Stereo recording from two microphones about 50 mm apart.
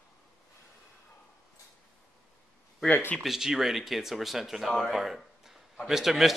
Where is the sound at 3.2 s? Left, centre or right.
Centre.